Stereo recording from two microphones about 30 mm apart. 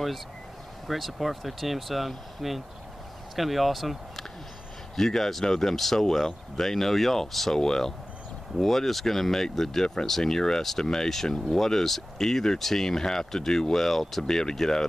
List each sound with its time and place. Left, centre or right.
0.8 s speech: centre
4.9 s speech: centre
7.5 s speech: left
8.5 s speech: centre
10.3 s speech: left
11.2 s speech: left
11.5 s speech: centre
14.4 s speech: centre